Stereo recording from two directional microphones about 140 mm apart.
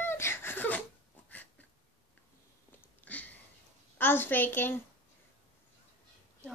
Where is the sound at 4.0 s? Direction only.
15° left (ahead or behind).